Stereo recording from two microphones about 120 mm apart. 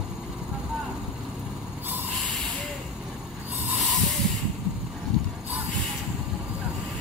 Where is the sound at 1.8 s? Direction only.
15° right (ahead or behind).